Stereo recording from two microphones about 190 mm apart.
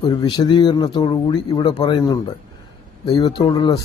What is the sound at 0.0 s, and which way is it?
A man's voice, 25° left (ahead or behind).